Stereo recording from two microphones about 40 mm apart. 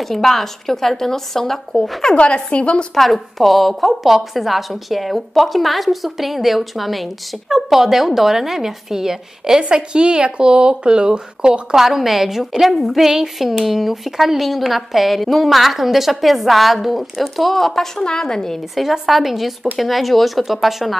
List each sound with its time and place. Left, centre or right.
0.0 s speech: centre
2.1 s speech: left
2.9 s speech: centre
9.6 s speech: right
11.7 s speech: centre
18.0 s speech: centre
18.8 s speech: centre